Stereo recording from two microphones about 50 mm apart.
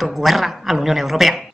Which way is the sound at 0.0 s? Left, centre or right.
Centre.